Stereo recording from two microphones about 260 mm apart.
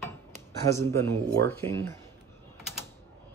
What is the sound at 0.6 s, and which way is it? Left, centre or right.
Speech, centre.